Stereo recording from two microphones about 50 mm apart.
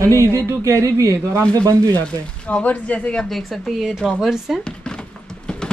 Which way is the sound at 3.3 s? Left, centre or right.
Centre.